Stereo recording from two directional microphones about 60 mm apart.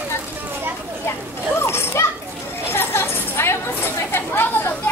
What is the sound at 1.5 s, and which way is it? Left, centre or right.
Children playing, left.